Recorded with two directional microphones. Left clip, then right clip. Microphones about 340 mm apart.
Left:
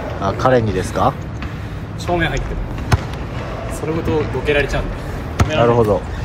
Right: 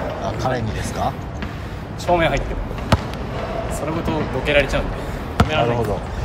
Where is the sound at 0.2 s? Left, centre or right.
Centre.